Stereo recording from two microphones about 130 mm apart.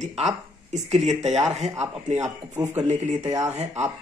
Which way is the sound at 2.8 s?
65° right (ahead or behind).